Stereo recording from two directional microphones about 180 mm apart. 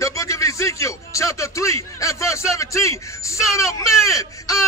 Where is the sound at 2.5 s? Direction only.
15° left (ahead or behind).